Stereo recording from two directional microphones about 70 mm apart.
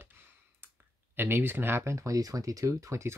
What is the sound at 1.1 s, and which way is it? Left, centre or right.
Speech, right.